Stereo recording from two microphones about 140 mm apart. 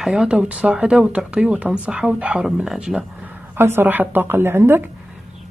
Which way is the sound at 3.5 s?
15° right (ahead or behind).